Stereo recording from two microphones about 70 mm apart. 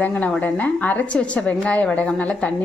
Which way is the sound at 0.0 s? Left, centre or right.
Left.